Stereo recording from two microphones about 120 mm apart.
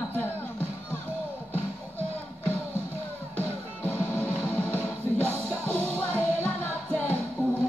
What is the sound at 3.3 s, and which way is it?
Music, 10° left (ahead or behind).